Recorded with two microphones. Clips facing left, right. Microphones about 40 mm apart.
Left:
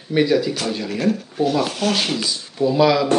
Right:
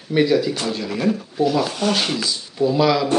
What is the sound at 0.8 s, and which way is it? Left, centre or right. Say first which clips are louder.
Speech: even; centre.